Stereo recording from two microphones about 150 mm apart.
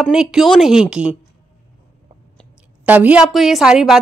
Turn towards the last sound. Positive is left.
turn(degrees=-5)  # may be behind; listen again after turning